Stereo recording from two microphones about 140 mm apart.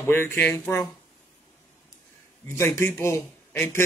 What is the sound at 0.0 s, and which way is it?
Speech, 15° left (ahead or behind).